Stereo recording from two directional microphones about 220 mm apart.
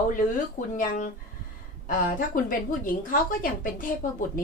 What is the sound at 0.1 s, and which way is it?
A woman's voice, 35° left (ahead or behind).